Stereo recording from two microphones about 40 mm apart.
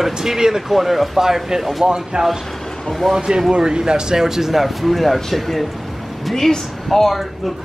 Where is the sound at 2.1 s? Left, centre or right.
Centre.